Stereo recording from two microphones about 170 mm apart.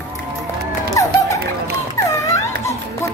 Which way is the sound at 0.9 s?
20° left (ahead or behind).